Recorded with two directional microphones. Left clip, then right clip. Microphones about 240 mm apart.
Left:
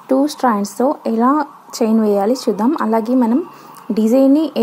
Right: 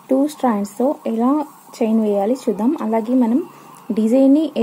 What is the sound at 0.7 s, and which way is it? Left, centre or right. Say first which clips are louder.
Speech: left 3 dB; left.